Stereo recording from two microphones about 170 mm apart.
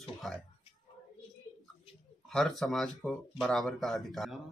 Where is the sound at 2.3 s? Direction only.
Centre (ahead or behind).